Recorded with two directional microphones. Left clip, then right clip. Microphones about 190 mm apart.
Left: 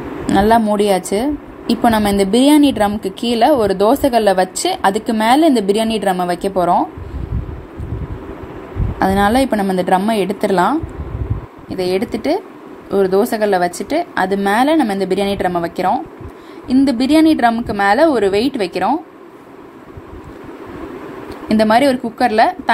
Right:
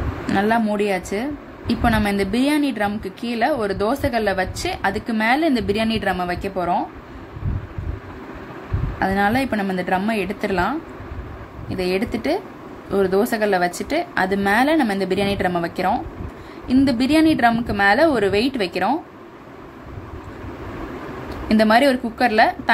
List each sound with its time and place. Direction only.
0.3 s a woman's voice: 10° left (ahead or behind)
9.0 s a woman's voice: 15° left (ahead or behind)
21.5 s a woman's voice: 10° left (ahead or behind)